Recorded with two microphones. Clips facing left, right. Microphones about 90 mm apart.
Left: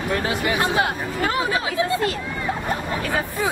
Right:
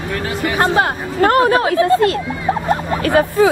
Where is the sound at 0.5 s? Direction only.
50° right (ahead or behind).